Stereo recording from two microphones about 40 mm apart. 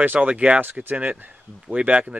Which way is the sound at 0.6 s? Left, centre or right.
Right.